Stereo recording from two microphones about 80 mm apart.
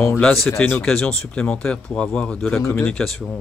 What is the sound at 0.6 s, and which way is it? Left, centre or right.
A man's voice, centre.